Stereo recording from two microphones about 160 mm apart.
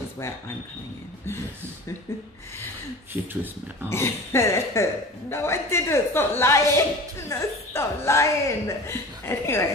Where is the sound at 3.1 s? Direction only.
15° right (ahead or behind).